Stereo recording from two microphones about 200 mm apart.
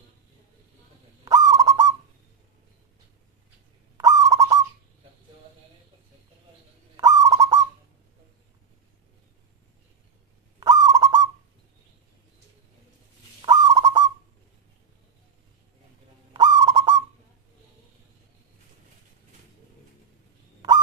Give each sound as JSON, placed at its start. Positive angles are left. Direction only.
{"t": 1.2, "sound": "owl", "side_deg": -20}
{"t": 3.9, "sound": "owl", "side_deg": -15}
{"t": 7.0, "sound": "owl", "side_deg": -20}
{"t": 10.6, "sound": "owl", "side_deg": -20}
{"t": 13.4, "sound": "bird", "side_deg": -20}
{"t": 16.3, "sound": "owl", "side_deg": -20}